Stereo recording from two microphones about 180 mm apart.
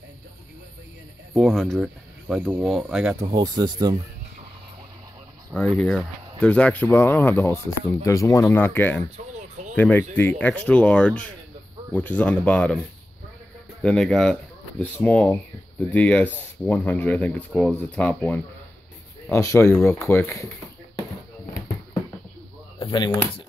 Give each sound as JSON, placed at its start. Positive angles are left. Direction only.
{"t": 1.3, "sound": "speech", "side_deg": 0}
{"t": 3.3, "sound": "speech", "side_deg": -25}
{"t": 5.5, "sound": "speech", "side_deg": 5}
{"t": 13.8, "sound": "speech", "side_deg": 5}
{"t": 22.8, "sound": "speech", "side_deg": 25}